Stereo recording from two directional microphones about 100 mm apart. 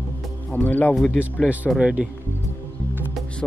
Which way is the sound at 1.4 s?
15° right (ahead or behind).